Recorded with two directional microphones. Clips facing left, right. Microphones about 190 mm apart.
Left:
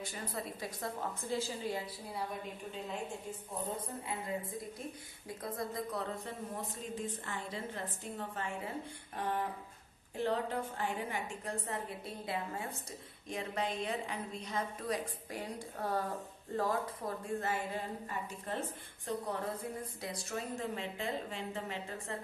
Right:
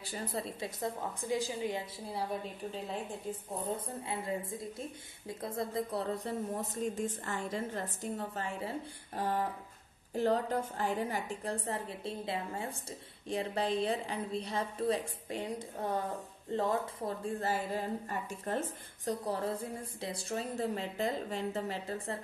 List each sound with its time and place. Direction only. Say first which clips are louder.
0.0 s a woman's voice: right 3 dB; 30° right (ahead or behind)
5.4 s a woman's voice: right 3 dB; 25° right (ahead or behind)
18.5 s a woman's voice: right 5 dB; 45° right (ahead or behind)
19.0 s speech: right 3 dB; 35° right (ahead or behind)